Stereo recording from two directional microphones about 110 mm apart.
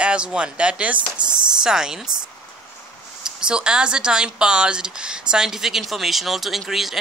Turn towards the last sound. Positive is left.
turn(degrees=0)  # may be behind; listen again after turning